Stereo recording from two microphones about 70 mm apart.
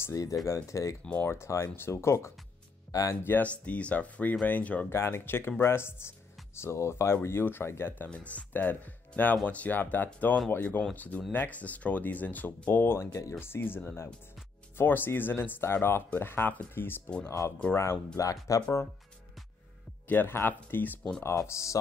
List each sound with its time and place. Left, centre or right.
0.1 s speech: left
2.9 s speech: left
3.3 s speech: left
4.8 s speech: left
8.1 s speech: centre; by 13.3 s left
13.4 s speech: left
17.7 s speech: left
20.1 s speech: left
21.2 s speech: left